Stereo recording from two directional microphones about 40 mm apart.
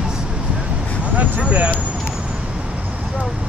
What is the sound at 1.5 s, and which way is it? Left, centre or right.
Speech, right.